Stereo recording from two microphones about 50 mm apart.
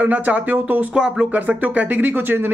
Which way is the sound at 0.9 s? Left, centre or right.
Centre.